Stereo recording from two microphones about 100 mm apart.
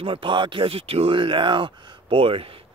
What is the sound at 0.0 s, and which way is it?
Speech, 60° right (ahead or behind).